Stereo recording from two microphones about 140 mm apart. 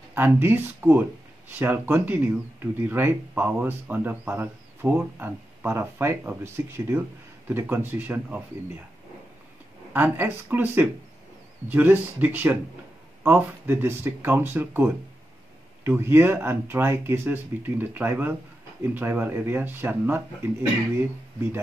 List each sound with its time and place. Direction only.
0.1 s speech: 15° right (ahead or behind)
9.9 s speech: 15° right (ahead or behind)